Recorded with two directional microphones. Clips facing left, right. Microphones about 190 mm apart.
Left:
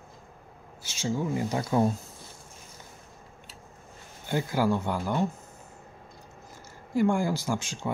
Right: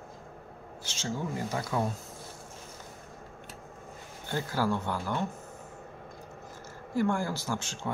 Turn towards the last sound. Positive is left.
turn(degrees=10)  # may be behind; listen again after turning